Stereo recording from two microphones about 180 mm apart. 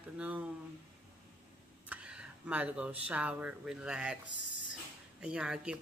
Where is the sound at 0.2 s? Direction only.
10° right (ahead or behind).